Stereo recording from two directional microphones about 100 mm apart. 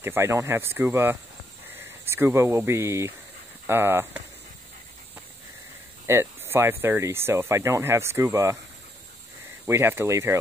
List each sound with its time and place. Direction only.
0.0 s speech: 25° right (ahead or behind)
6.0 s speech: 25° right (ahead or behind)
9.7 s speech: 25° right (ahead or behind)